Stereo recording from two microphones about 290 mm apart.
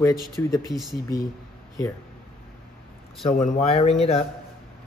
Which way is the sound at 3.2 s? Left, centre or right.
Left.